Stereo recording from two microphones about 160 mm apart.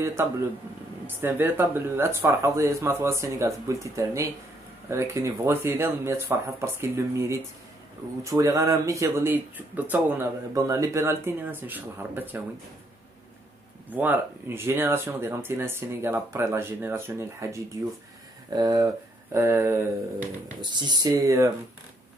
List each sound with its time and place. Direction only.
0.0 s speech: 15° right (ahead or behind)
13.8 s speech: 10° right (ahead or behind)
20.7 s speech: 30° right (ahead or behind)